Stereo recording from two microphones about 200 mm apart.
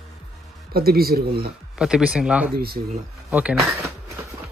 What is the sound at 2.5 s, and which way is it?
Speech, 50° right (ahead or behind).